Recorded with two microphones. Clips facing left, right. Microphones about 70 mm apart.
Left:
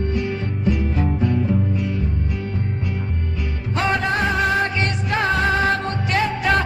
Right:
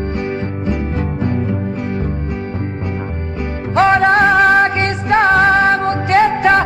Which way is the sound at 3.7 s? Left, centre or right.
Right.